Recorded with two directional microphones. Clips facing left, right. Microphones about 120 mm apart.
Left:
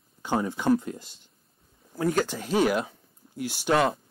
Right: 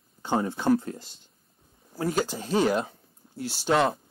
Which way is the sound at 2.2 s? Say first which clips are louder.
Even; 35° right (ahead or behind).